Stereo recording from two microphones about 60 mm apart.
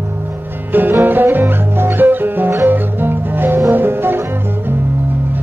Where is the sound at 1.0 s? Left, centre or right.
Right.